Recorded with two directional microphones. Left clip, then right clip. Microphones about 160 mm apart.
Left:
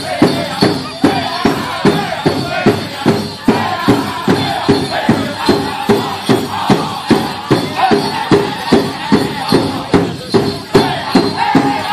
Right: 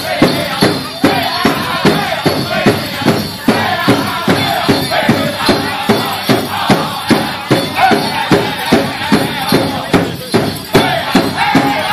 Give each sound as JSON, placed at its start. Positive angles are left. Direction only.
{"t": 0.2, "sound": "music", "side_deg": -35}